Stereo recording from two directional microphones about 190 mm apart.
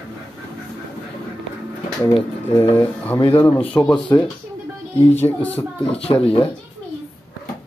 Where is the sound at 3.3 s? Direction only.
10° left (ahead or behind).